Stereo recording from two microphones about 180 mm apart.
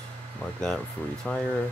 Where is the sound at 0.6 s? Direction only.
5° left (ahead or behind).